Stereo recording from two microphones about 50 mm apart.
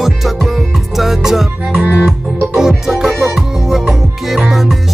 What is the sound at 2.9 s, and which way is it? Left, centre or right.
Music, centre.